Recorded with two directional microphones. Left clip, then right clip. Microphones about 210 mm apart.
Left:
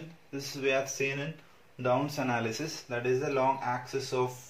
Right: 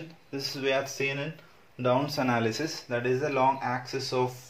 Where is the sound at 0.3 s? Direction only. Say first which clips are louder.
Right 2 dB; 35° right (ahead or behind).